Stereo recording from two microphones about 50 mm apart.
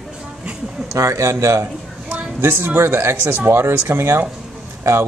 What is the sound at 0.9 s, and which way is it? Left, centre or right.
Speech, right.